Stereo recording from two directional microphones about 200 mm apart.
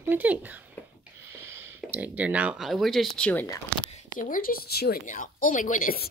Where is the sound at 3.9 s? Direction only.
40° left (ahead or behind).